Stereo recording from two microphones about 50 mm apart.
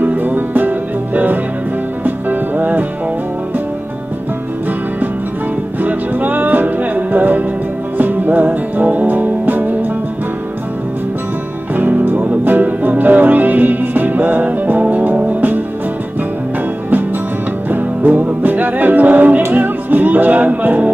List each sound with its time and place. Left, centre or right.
0.0 s music: right
5.8 s music: right
11.7 s music: right
17.6 s music: right